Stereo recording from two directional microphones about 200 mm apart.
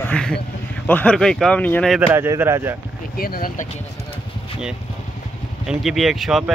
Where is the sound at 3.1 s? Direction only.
45° left (ahead or behind).